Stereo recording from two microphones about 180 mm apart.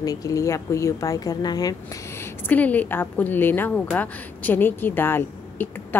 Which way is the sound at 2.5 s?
10° left (ahead or behind).